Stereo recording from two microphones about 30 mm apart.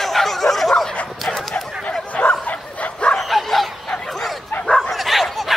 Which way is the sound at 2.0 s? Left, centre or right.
Left.